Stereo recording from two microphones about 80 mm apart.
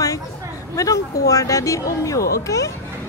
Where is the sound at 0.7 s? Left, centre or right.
Left.